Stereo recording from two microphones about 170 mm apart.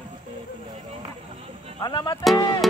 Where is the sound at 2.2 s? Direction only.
Centre (ahead or behind).